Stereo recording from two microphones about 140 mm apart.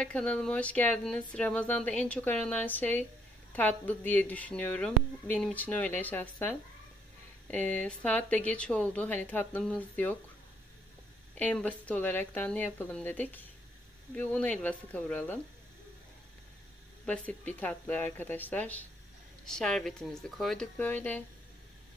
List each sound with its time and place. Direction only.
0.0 s speech: 10° left (ahead or behind)
7.5 s speech: 10° left (ahead or behind)
11.3 s speech: 10° left (ahead or behind)
17.0 s speech: 10° left (ahead or behind)